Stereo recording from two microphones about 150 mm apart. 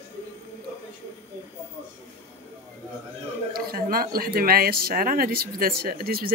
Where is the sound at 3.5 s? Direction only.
75° right (ahead or behind).